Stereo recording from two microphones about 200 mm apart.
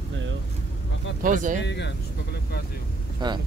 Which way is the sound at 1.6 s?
60° left (ahead or behind).